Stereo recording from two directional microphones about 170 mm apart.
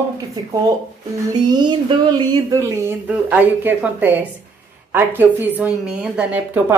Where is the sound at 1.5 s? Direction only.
25° right (ahead or behind).